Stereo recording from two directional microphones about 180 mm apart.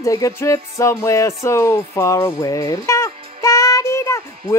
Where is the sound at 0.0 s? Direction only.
20° left (ahead or behind).